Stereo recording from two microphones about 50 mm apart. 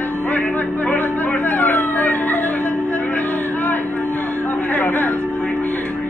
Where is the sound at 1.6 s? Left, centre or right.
Left.